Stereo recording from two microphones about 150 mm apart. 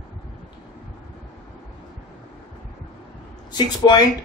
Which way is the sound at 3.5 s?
30° left (ahead or behind).